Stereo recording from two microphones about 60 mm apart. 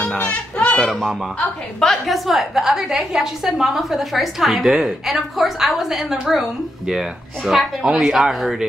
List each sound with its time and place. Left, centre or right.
0.2 s speech: left
1.8 s a woman's voice: centre